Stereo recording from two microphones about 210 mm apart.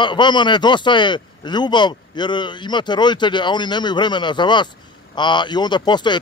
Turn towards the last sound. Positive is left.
turn(degrees=20)  # may be behind; listen again after turning